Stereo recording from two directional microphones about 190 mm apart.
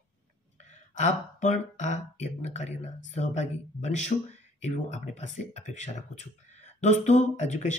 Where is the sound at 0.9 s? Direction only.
35° left (ahead or behind).